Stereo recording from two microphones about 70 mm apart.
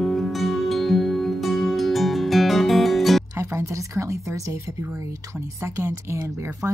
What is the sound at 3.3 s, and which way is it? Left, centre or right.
Speech, right.